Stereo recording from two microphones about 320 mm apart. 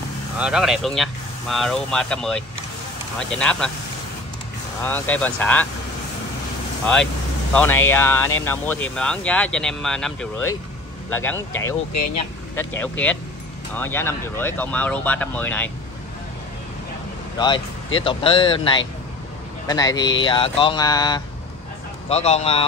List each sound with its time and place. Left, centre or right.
0.4 s speech: centre
4.8 s speech: centre
7.5 s speech: centre
17.9 s a man's voice: centre